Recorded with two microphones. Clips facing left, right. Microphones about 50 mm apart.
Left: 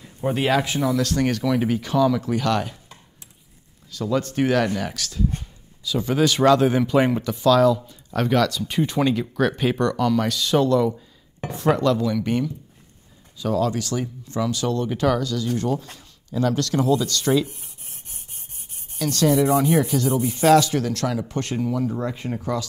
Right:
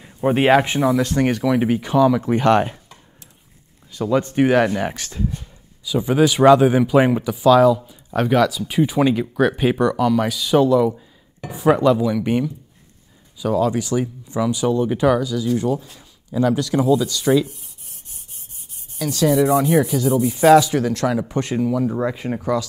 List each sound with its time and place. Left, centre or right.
0.0 s speech: right
3.9 s speech: right
5.9 s speech: centre
17.5 s rub: left
18.9 s speech: centre
21.6 s speech: centre